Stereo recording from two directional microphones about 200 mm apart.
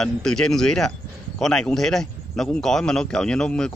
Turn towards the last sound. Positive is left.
turn(degrees=5)  # may be behind; listen again after turning